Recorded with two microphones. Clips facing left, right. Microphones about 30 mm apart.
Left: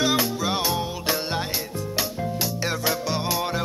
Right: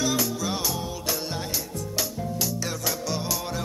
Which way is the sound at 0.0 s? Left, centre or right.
Left.